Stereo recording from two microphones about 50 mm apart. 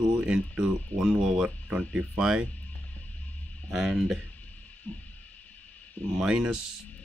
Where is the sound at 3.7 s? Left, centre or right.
Centre.